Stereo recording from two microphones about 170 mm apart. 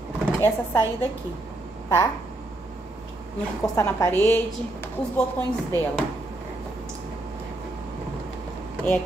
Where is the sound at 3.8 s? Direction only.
15° left (ahead or behind).